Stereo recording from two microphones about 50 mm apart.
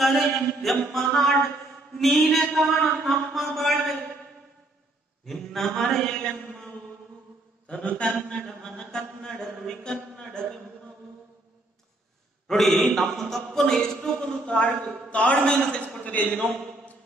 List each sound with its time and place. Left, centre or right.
0.0 s a man's voice: centre
5.2 s mantra: centre
7.8 s a sound: left
8.5 s mantra: centre
12.4 s a man's voice: centre
15.0 s a sound: left
16.0 s a man's voice: left